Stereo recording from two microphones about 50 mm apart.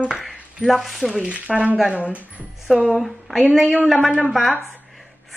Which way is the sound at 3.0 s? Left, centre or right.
Centre.